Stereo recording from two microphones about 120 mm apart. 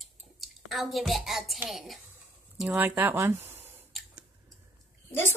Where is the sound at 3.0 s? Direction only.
20° right (ahead or behind).